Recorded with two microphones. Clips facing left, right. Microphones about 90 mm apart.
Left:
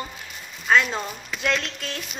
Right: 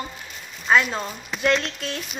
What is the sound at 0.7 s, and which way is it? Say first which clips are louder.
A woman's voice: right 1 dB; 10° right (ahead or behind).